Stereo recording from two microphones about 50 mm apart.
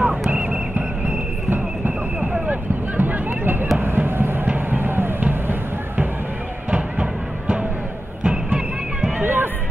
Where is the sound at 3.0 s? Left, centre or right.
Right.